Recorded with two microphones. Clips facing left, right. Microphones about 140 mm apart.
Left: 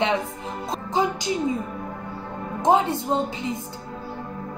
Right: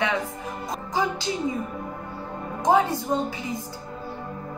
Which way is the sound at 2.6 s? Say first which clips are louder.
Left 1 dB; 25° left (ahead or behind).